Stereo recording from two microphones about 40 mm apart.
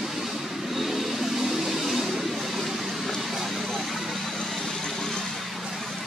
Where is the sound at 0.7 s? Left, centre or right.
Centre.